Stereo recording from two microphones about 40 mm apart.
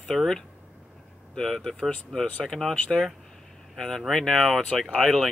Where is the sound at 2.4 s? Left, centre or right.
Centre.